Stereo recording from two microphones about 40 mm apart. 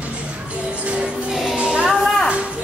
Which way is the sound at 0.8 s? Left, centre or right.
Right.